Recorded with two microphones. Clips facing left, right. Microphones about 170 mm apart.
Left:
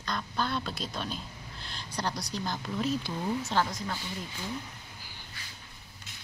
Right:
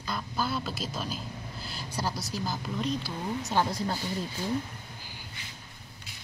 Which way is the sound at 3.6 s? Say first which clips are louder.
Right 5 dB; 35° right (ahead or behind).